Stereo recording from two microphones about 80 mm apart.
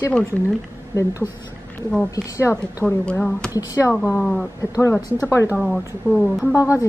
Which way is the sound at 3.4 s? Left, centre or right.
Centre.